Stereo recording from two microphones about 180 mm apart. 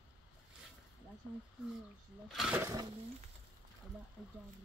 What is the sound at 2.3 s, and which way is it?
Speech, centre (ahead or behind).